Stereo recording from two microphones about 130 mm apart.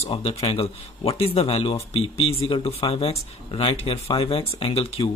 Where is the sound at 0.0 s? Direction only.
45° left (ahead or behind).